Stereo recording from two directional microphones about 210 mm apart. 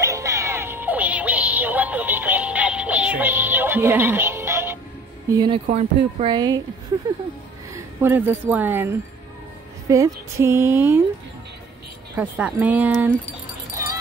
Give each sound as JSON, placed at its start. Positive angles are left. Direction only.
{"t": 0.0, "sound": "music", "side_deg": -15}
{"t": 5.3, "sound": "speech", "side_deg": -20}
{"t": 5.7, "sound": "speech", "side_deg": -30}
{"t": 7.7, "sound": "speech", "side_deg": -10}
{"t": 12.2, "sound": "speech", "side_deg": -5}